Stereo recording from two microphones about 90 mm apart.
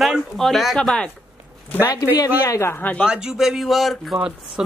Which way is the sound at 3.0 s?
5° right (ahead or behind).